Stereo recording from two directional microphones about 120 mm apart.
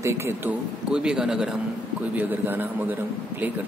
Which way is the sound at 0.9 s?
5° right (ahead or behind).